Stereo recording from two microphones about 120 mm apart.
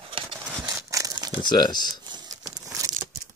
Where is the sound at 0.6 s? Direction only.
30° right (ahead or behind).